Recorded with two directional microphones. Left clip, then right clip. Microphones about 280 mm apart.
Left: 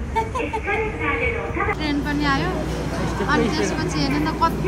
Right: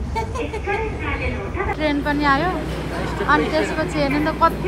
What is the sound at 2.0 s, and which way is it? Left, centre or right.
A woman's voice, centre.